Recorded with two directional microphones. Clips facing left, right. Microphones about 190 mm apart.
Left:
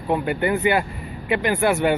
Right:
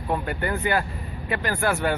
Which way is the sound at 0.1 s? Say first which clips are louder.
Left 5 dB; 10° left (ahead or behind).